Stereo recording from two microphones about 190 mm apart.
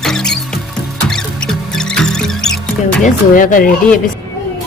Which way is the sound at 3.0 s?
45° left (ahead or behind).